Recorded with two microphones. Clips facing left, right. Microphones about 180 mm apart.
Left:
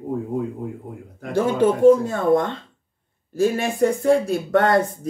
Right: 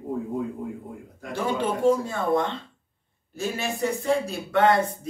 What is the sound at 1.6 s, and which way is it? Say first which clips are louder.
Speech: left 9 dB; 50° left (ahead or behind).